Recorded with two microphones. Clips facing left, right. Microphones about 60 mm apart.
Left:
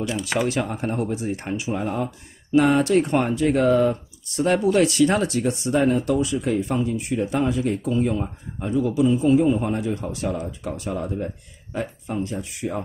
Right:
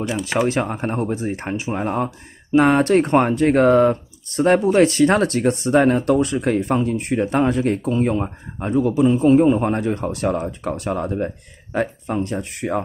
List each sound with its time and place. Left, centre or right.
0.2 s speech: right
4.6 s speech: right